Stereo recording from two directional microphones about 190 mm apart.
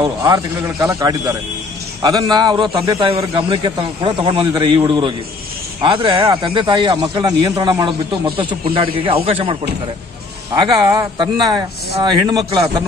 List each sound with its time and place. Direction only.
0.0 s a man's voice: 20° right (ahead or behind)
10.5 s speech: 20° right (ahead or behind)